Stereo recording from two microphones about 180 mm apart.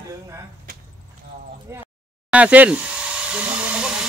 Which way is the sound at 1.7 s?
15° right (ahead or behind).